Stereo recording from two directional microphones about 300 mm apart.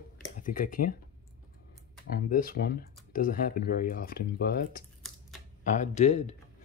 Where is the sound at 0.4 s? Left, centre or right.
Left.